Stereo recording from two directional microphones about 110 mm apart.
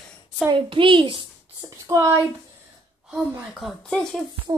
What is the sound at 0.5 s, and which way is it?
Speech, 50° right (ahead or behind).